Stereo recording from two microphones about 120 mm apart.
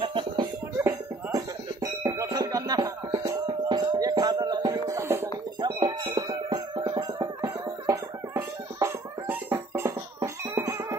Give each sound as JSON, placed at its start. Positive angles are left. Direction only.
{"t": 0.0, "sound": "music", "side_deg": -45}
{"t": 0.7, "sound": "music", "side_deg": -25}
{"t": 5.7, "sound": "music", "side_deg": -45}
{"t": 6.1, "sound": "music", "side_deg": -35}